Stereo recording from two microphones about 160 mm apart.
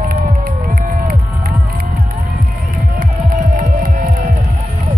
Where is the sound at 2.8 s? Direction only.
75° right (ahead or behind).